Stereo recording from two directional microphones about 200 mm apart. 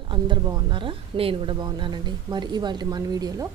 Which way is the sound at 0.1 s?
25° right (ahead or behind).